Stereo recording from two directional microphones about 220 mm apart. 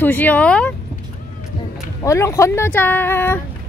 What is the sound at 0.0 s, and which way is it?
Speech, 10° left (ahead or behind).